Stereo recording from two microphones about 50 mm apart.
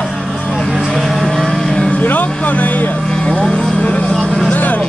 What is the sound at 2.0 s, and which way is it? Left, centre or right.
Vehicle, left.